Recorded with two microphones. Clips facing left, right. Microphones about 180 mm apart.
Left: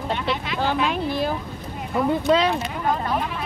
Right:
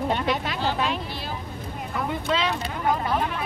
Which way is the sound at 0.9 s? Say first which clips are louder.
Left 7 dB; 50° left (ahead or behind).